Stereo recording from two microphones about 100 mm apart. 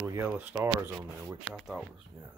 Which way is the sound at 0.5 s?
35° right (ahead or behind).